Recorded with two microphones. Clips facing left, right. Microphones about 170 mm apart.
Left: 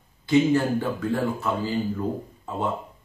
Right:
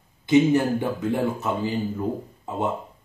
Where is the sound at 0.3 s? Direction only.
20° right (ahead or behind).